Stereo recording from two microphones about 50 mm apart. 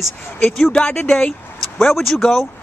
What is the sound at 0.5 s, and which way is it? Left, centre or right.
Speech, centre.